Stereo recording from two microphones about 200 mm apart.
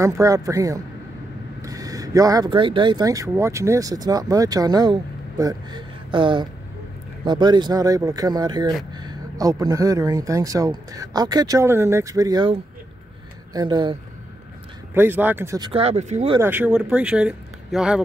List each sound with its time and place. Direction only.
0.0 s speech: 15° right (ahead or behind)
15.0 s speech: 10° right (ahead or behind)
15.7 s speech: 30° right (ahead or behind)
16.3 s speech: 10° right (ahead or behind)